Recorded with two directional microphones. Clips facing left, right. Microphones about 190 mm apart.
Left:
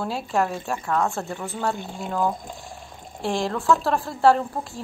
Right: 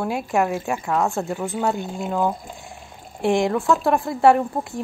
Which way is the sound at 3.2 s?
20° right (ahead or behind).